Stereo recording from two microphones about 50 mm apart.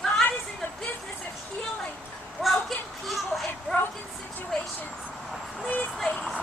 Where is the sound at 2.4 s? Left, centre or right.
Centre.